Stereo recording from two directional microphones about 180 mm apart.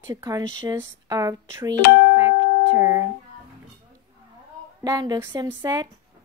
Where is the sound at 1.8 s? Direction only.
60° left (ahead or behind).